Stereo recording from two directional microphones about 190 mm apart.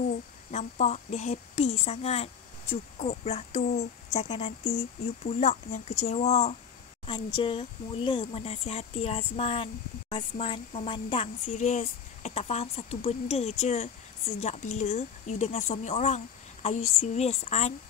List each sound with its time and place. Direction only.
0.5 s a woman's voice: 40° left (ahead or behind)
11.5 s a woman's voice: 40° left (ahead or behind)